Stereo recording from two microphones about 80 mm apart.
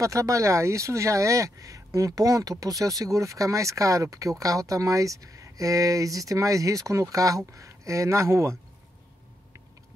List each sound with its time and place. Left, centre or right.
0.0 s speech: right